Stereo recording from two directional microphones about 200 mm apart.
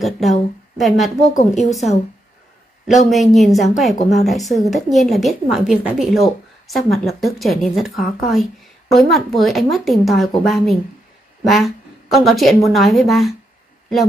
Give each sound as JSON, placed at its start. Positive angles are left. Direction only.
{"t": 0.0, "sound": "speech", "side_deg": 0}
{"t": 1.3, "sound": "a woman's voice", "side_deg": 35}
{"t": 1.6, "sound": "speech", "side_deg": 0}
{"t": 3.1, "sound": "speech", "side_deg": 0}